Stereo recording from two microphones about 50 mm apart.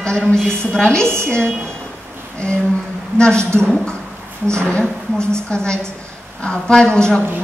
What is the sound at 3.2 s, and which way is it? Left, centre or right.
A woman's voice, centre.